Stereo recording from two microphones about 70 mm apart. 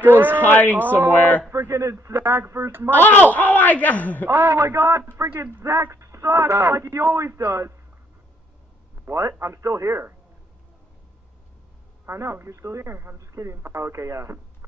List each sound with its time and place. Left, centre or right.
0.0 s speech: right
0.4 s a man's voice: left
1.5 s speech: right
2.9 s a man's voice: left
4.3 s speech: right
9.1 s speech: right
12.1 s speech: right